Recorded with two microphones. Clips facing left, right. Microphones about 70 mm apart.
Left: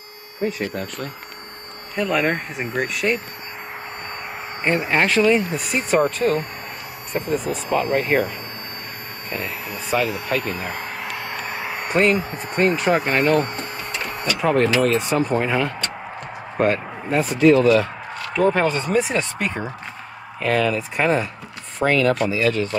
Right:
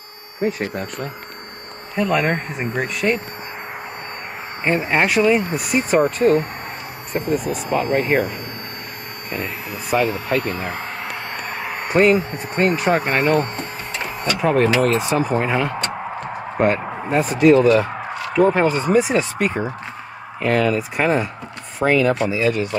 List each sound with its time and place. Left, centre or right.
0.7 s speech: centre
4.6 s speech: centre
9.3 s speech: centre
16.8 s a sound: right
17.1 s speech: centre